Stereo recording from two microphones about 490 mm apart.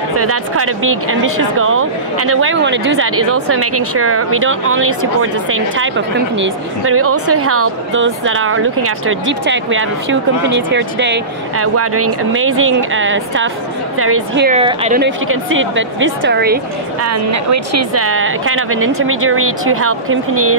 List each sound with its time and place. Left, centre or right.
0.2 s speech: right
17.0 s speech: right